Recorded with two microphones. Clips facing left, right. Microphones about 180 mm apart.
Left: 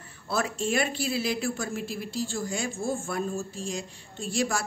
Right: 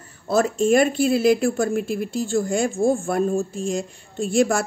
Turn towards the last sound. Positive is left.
turn(degrees=-50)  # may be behind; listen again after turning